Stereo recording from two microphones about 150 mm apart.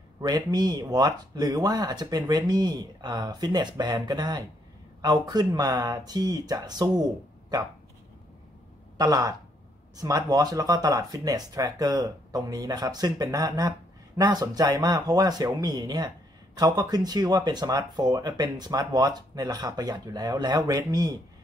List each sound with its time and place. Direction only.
0.2 s speech: 25° right (ahead or behind)
8.9 s speech: 25° right (ahead or behind)